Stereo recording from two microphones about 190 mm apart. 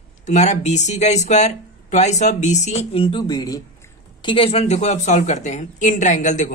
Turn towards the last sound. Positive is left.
turn(degrees=40)  # may be behind; listen again after turning